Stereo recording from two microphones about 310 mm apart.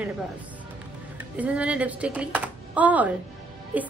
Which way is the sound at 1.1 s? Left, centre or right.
Centre.